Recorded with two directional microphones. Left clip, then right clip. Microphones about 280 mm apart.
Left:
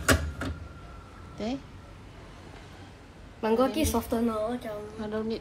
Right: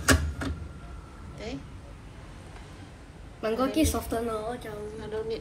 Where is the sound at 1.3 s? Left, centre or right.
Centre.